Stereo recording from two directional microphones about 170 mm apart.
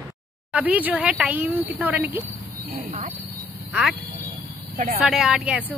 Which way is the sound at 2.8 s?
50° right (ahead or behind).